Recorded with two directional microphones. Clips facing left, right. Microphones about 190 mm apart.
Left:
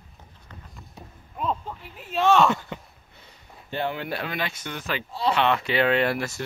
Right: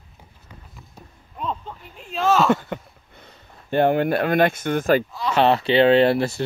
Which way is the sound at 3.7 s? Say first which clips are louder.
Right 11 dB; 55° right (ahead or behind).